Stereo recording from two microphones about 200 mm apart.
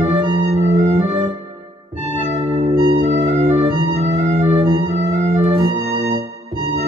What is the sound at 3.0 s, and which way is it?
Music, 30° right (ahead or behind).